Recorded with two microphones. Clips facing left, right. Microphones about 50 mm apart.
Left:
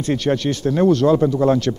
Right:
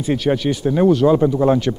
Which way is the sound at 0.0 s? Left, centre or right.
Centre.